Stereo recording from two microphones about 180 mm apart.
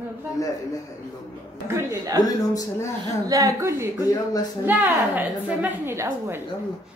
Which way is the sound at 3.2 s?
20° right (ahead or behind).